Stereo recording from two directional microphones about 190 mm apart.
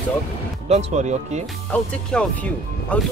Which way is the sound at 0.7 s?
35° right (ahead or behind).